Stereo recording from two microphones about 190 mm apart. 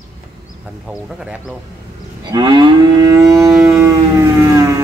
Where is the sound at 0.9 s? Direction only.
5° right (ahead or behind).